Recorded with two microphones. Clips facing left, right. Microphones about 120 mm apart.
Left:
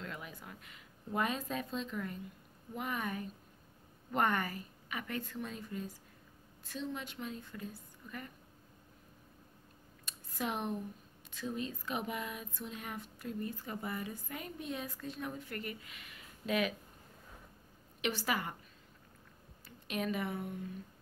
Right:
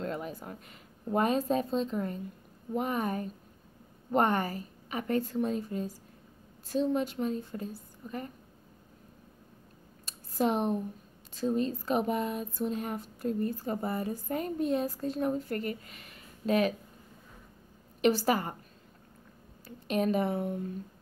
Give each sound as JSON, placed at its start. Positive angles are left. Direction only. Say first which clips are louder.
{"t": 0.0, "sound": "speech", "louder": "right 10 dB", "side_deg": -40}
{"t": 10.0, "sound": "a sound", "louder": "right 10 dB", "side_deg": -35}
{"t": 11.3, "sound": "speech", "louder": "right 10 dB", "side_deg": -35}
{"t": 18.0, "sound": "speech", "louder": "right 10 dB", "side_deg": -40}
{"t": 19.9, "sound": "speech", "louder": "right 8 dB", "side_deg": -40}